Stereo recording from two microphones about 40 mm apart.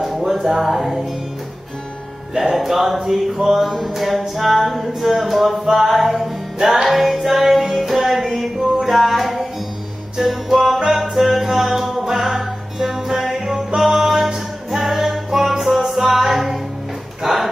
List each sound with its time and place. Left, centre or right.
0.0 s music: centre
2.5 s a sound: centre
3.4 s music: centre
17.2 s dog: centre